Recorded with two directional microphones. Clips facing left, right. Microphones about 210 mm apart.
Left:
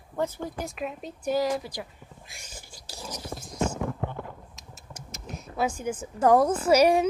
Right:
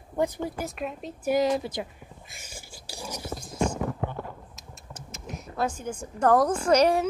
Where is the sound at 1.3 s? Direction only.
25° right (ahead or behind).